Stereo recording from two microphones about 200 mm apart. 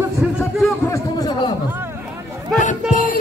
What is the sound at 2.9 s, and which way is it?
Music, 45° left (ahead or behind).